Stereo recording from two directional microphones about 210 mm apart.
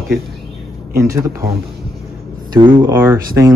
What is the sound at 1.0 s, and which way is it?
Speech, 15° right (ahead or behind).